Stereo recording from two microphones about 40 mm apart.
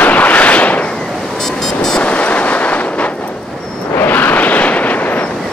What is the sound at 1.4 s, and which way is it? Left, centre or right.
Vehicle, centre.